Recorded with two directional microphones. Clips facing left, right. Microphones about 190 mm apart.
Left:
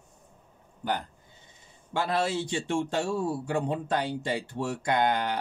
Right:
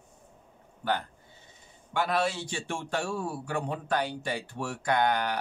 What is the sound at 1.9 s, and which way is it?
Speech, 25° left (ahead or behind).